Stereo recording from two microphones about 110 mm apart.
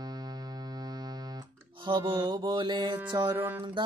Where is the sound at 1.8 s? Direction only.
50° right (ahead or behind).